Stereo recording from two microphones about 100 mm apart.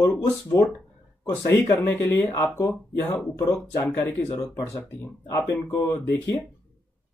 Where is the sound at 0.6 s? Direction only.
35° left (ahead or behind).